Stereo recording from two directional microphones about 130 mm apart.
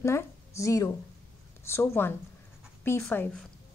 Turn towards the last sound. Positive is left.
turn(degrees=20)  # may be behind; listen again after turning